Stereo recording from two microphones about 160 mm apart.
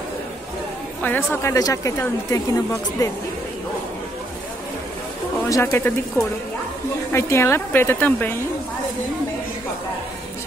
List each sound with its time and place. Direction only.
1.0 s speech: 10° left (ahead or behind)
5.5 s speech: 15° left (ahead or behind)